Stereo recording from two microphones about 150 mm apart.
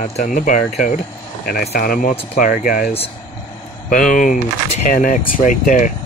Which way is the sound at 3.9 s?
60° left (ahead or behind).